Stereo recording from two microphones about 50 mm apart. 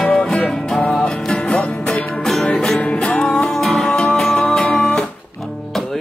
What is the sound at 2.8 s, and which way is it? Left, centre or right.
Music, left.